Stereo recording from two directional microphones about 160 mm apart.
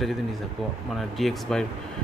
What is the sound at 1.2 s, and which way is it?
Speech, 5° left (ahead or behind).